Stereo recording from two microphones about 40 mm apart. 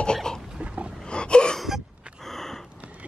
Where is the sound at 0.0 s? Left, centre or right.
Centre.